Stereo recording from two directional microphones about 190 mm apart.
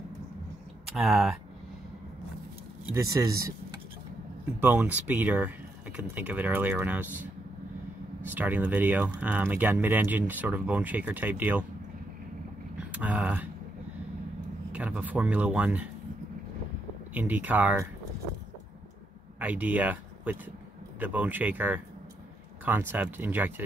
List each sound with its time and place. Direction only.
0.8 s speech: centre (ahead or behind)
2.9 s speech: 15° right (ahead or behind)
12.7 s vehicle: 5° right (ahead or behind)
14.7 s speech: 5° right (ahead or behind)
17.1 s speech: 10° right (ahead or behind)
19.4 s speech: 10° right (ahead or behind)